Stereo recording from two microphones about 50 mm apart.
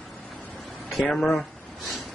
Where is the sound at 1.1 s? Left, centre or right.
Centre.